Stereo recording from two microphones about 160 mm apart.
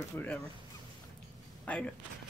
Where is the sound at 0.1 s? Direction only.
5° left (ahead or behind).